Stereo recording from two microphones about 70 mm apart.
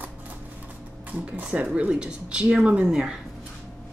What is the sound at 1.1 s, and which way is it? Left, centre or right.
Speech, centre.